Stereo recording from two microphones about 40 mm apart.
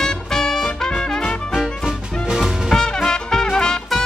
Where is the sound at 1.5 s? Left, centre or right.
Centre.